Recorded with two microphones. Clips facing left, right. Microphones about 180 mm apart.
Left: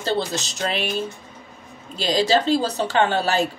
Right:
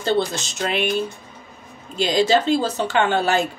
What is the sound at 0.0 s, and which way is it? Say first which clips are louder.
Speech: right 3 dB; 35° left (ahead or behind).